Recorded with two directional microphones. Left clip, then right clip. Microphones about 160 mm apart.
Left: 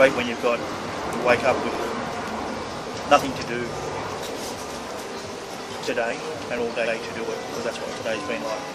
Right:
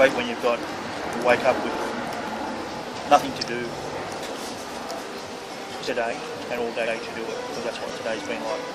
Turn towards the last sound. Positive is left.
turn(degrees=0)  # may be behind; listen again after turning